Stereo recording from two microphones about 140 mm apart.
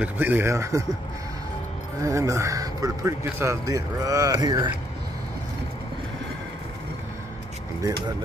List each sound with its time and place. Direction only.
0.0 s speech: 15° right (ahead or behind)
2.0 s speech: 20° right (ahead or behind)